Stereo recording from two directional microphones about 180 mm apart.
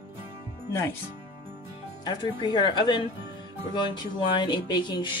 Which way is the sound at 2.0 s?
25° left (ahead or behind).